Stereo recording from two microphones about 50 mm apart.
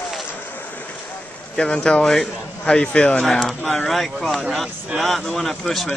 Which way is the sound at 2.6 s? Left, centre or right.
Centre.